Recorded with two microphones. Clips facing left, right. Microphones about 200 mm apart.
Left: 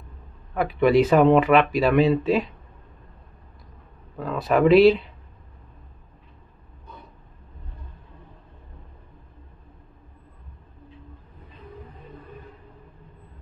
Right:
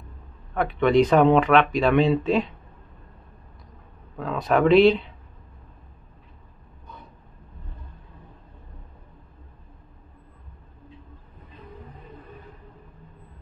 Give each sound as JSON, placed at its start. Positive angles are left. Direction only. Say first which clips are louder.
{"t": 0.6, "sound": "speech", "louder": "left 1 dB", "side_deg": 5}
{"t": 4.2, "sound": "speech", "louder": "left 1 dB", "side_deg": 0}